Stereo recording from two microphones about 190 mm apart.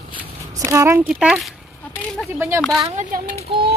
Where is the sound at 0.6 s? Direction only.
15° right (ahead or behind).